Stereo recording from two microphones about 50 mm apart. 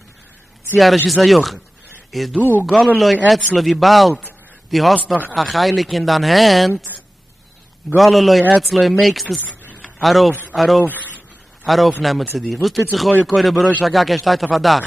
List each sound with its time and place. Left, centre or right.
1.0 s a man's voice: centre
7.9 s a man's voice: centre
10.9 s a sound: left
11.6 s speech: centre